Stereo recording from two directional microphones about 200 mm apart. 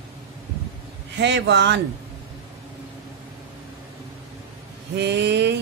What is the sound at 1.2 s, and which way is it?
Speech, 60° right (ahead or behind).